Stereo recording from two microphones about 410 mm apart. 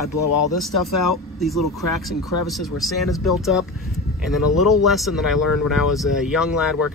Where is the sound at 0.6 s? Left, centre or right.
Centre.